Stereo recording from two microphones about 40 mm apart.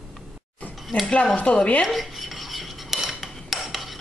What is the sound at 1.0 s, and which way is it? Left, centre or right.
Speech, left.